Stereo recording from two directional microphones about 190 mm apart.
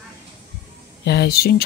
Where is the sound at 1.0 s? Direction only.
60° left (ahead or behind).